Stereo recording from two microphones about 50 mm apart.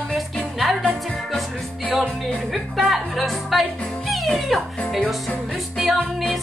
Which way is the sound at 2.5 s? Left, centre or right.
Centre.